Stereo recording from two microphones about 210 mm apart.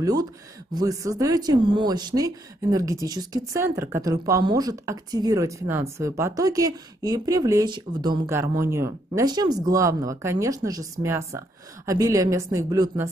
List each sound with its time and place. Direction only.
0.0 s speech: 20° right (ahead or behind)